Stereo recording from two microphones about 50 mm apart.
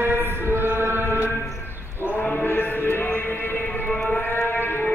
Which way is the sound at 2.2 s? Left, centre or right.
Left.